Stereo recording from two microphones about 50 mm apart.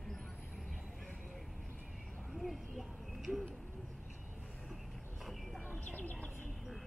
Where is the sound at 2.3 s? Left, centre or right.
Centre.